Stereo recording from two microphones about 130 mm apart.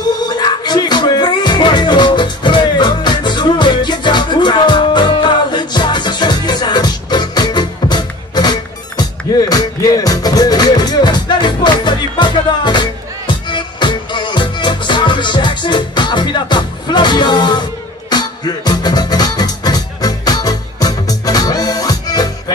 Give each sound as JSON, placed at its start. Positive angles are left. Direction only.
{"t": 0.3, "sound": "music", "side_deg": 35}